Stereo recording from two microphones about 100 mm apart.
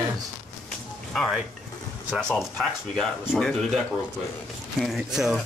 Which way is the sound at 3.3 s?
5° left (ahead or behind).